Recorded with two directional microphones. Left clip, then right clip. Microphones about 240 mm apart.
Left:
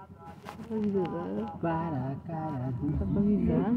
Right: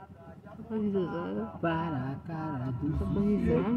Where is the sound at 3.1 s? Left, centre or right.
Centre.